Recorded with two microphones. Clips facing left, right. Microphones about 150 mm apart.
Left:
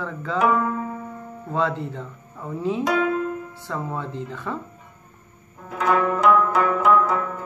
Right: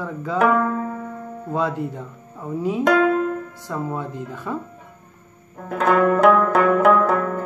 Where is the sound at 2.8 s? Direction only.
60° right (ahead or behind).